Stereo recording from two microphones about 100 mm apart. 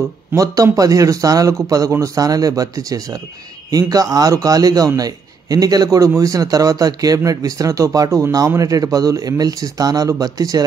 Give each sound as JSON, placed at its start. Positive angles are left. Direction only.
{"t": 0.3, "sound": "a man's voice", "side_deg": -35}